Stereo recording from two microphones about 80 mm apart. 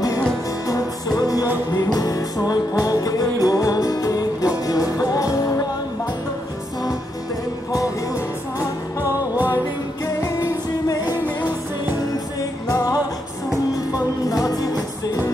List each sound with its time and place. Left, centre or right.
0.7 s music: left
10.0 s music: left
12.6 s music: left